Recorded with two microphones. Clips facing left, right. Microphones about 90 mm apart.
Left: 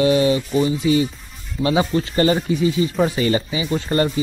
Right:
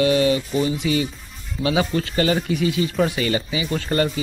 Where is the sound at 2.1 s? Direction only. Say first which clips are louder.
Left 3 dB; 35° left (ahead or behind).